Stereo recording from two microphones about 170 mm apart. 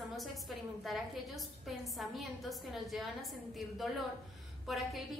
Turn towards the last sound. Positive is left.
turn(degrees=0)  # may be behind; listen again after turning